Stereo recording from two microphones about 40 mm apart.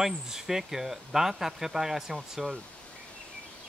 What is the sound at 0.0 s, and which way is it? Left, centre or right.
Speech, centre.